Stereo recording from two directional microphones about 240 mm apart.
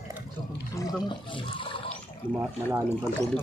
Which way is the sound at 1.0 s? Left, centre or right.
Left.